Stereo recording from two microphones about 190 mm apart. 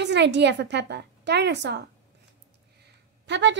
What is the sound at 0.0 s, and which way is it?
A woman's voice, 65° right (ahead or behind).